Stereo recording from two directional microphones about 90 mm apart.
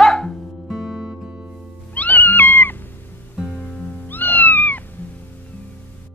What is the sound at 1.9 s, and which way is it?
Cat, 20° left (ahead or behind).